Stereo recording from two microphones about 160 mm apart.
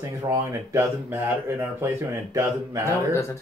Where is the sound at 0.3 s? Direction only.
20° right (ahead or behind).